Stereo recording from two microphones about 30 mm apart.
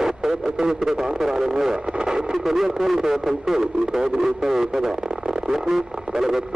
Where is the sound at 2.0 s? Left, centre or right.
Centre.